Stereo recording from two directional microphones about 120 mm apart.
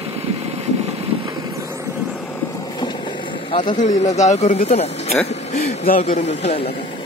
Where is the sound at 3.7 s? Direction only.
70° left (ahead or behind).